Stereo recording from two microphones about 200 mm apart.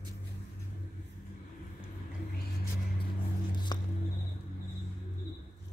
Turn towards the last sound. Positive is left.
turn(degrees=20)  # may be behind; listen again after turning